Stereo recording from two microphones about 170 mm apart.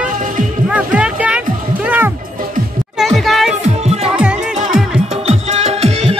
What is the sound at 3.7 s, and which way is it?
Music, 35° right (ahead or behind).